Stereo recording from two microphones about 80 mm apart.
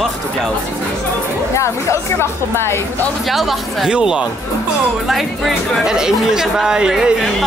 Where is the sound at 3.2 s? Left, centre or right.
Centre.